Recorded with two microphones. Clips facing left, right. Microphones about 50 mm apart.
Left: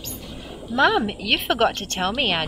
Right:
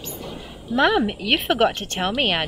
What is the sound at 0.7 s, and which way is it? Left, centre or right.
A woman's voice, centre.